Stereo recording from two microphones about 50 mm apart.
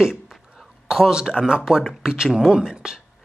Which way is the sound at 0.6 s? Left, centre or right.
Centre.